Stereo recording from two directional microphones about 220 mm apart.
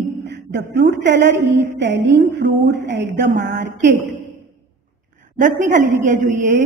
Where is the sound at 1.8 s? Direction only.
50° right (ahead or behind).